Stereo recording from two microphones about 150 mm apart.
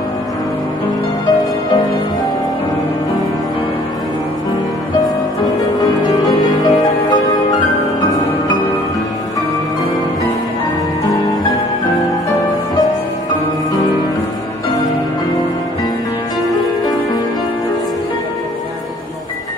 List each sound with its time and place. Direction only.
6.4 s music: 25° left (ahead or behind)